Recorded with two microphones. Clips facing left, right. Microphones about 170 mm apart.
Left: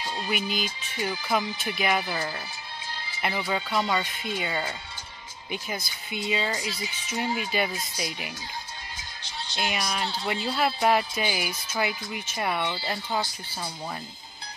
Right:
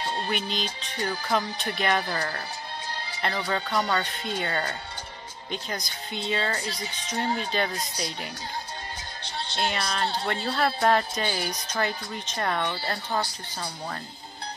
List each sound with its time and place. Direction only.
0.0 s music: 60° right (ahead or behind)
0.3 s speech: 5° left (ahead or behind)
9.6 s speech: 10° left (ahead or behind)